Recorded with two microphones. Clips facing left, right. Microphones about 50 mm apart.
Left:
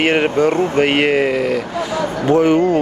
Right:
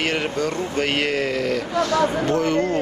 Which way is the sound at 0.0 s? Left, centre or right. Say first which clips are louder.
Left 8 dB; left.